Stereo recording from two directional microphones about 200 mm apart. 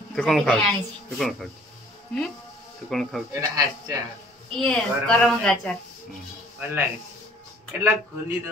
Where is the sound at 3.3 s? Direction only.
15° right (ahead or behind).